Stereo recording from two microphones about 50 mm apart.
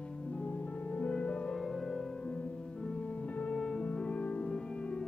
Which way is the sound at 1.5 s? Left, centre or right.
Centre.